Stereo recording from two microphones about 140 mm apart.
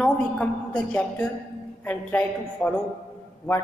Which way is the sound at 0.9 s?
10° left (ahead or behind).